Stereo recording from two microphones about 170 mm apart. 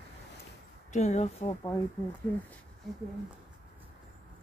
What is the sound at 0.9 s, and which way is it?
Speech, 40° left (ahead or behind).